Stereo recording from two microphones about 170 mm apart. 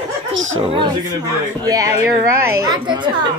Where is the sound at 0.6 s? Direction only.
35° right (ahead or behind).